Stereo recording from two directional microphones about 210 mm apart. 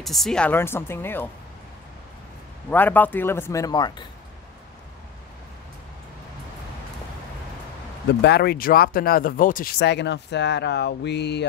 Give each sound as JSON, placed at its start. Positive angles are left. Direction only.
{"t": 0.0, "sound": "speech", "side_deg": 0}
{"t": 2.7, "sound": "speech", "side_deg": 10}
{"t": 8.1, "sound": "speech", "side_deg": 50}